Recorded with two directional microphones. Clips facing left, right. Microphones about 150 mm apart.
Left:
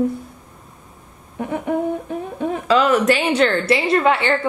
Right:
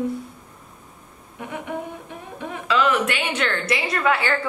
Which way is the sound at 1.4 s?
35° left (ahead or behind).